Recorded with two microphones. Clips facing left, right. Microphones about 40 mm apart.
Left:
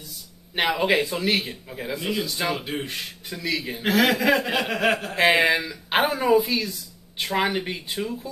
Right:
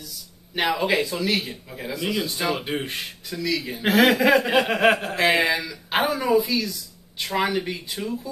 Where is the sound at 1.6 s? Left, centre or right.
Centre.